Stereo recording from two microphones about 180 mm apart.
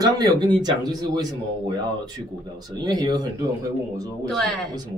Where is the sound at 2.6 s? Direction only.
20° right (ahead or behind).